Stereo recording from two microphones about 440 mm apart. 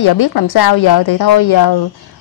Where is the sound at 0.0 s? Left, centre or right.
Left.